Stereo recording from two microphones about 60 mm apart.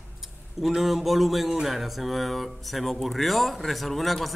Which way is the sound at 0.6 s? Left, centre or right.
Centre.